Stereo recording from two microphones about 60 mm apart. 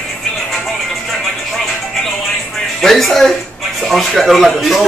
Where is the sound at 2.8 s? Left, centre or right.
Centre.